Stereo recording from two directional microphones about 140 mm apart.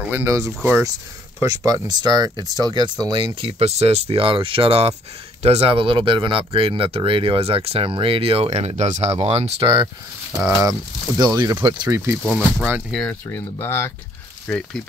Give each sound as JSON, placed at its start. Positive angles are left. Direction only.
{"t": 0.1, "sound": "speech", "side_deg": -20}
{"t": 11.1, "sound": "speech", "side_deg": -30}
{"t": 12.2, "sound": "speech", "side_deg": 10}
{"t": 12.5, "sound": "speech", "side_deg": -10}
{"t": 12.9, "sound": "speech", "side_deg": 10}